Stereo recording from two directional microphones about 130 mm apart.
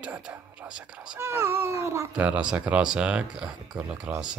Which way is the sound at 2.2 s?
10° right (ahead or behind).